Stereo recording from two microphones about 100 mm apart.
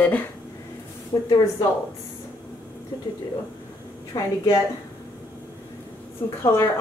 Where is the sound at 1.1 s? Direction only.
35° left (ahead or behind).